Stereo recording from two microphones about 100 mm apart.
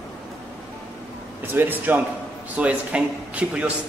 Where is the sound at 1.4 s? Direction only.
20° right (ahead or behind).